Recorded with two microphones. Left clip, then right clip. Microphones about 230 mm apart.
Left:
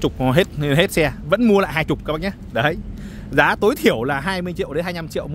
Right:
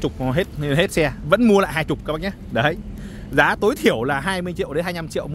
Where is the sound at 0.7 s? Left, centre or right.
Centre.